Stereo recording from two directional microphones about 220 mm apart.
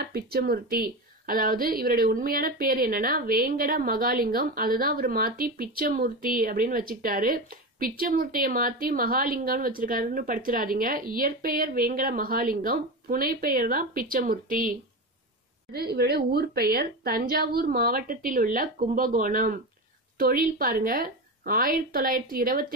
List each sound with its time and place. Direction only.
0.1 s a woman's voice: 45° right (ahead or behind)